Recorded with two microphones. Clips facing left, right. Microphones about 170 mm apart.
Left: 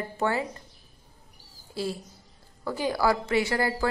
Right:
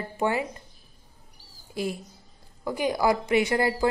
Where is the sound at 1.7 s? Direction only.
15° right (ahead or behind).